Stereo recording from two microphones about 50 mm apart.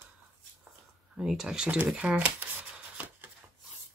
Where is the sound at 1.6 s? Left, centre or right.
Right.